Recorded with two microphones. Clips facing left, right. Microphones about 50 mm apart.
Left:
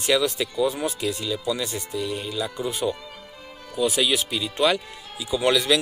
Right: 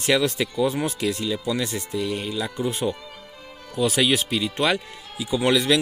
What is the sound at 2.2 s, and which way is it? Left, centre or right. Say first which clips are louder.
Speech: right 1 dB; centre.